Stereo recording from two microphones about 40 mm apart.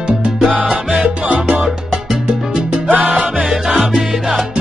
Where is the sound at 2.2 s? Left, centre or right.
Centre.